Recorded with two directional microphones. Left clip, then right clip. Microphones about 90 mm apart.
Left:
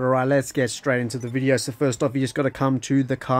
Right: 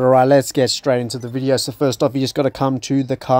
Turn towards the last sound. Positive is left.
turn(degrees=-30)  # may be behind; listen again after turning